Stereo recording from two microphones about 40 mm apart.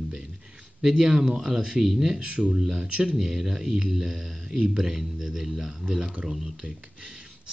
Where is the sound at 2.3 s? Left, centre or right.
Right.